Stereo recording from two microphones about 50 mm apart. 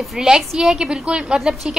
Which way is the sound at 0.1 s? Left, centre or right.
Centre.